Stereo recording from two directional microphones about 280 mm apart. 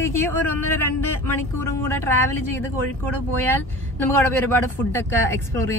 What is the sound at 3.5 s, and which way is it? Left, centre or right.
A woman's voice, centre.